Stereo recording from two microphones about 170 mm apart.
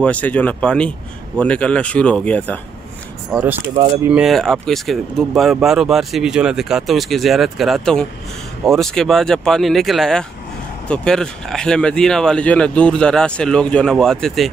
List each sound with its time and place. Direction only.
0.0 s speech: 10° left (ahead or behind)
3.3 s speech: 5° right (ahead or behind)
3.6 s speech: 35° right (ahead or behind)
4.1 s speech: centre (ahead or behind)